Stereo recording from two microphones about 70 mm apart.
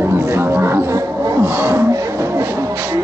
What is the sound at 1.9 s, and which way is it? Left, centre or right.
Beatboxing, right.